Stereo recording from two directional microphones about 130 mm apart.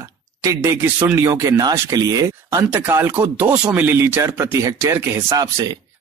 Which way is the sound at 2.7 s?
15° right (ahead or behind).